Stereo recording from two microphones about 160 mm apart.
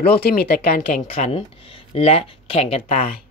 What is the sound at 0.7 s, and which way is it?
Speech, 45° left (ahead or behind).